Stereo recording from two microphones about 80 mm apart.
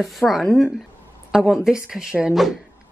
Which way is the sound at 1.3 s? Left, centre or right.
Centre.